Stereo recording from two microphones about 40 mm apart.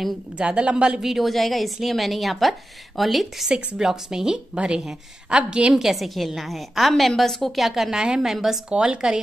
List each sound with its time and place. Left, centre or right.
0.4 s a woman's voice: right
1.0 s a woman's voice: centre; by 5.8 s right
5.8 s a woman's voice: centre
7.9 s speech: centre
8.6 s a woman's voice: right